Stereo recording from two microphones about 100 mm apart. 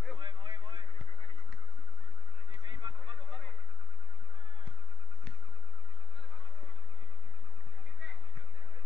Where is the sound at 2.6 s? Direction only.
55° right (ahead or behind).